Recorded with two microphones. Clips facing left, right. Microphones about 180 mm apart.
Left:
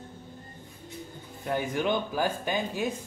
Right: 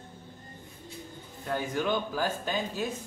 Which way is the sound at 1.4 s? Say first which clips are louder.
Left 2 dB; 20° left (ahead or behind).